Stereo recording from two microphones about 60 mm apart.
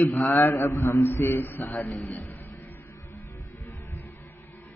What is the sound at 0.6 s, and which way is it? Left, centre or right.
A man's voice, left.